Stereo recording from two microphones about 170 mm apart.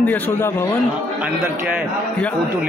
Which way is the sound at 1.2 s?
5° right (ahead or behind).